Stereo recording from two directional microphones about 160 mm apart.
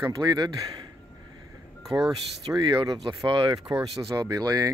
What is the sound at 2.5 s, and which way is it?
Speech, 25° right (ahead or behind).